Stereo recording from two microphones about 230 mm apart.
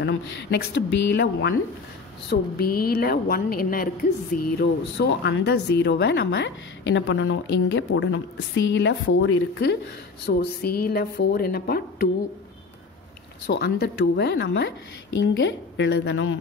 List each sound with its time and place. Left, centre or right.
0.0 s a woman's voice: left
10.2 s a woman's voice: left
13.5 s speech: left